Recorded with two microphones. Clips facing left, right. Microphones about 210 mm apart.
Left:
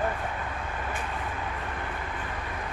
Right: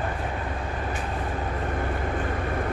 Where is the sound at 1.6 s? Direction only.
45° right (ahead or behind).